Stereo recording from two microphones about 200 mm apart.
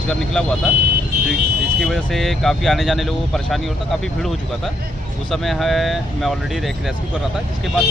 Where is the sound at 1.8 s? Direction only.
Centre (ahead or behind).